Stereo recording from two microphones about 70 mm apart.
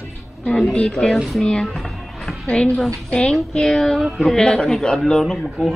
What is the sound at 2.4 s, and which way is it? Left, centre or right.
Speech, centre.